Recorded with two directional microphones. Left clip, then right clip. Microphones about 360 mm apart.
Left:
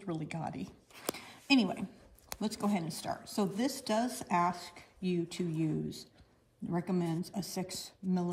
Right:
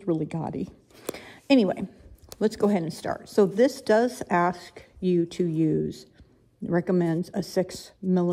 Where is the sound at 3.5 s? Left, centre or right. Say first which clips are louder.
Right 14 dB; centre.